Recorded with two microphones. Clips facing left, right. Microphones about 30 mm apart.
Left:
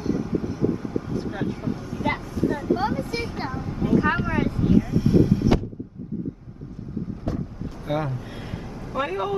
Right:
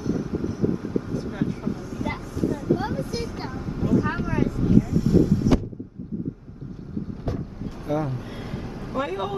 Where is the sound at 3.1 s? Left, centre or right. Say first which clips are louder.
Left 2 dB; left.